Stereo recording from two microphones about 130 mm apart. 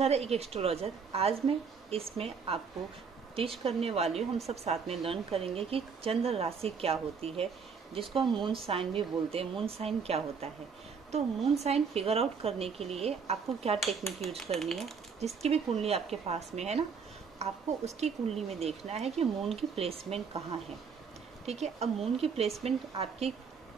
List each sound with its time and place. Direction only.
0.0 s speech: 50° right (ahead or behind)
14.5 s speech: centre (ahead or behind)
15.1 s speech: 55° right (ahead or behind)
21.5 s speech: 55° right (ahead or behind)